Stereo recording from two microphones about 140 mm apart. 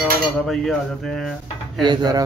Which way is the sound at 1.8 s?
30° right (ahead or behind).